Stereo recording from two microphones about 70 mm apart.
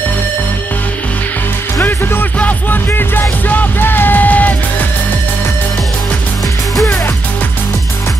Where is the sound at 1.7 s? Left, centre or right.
Left.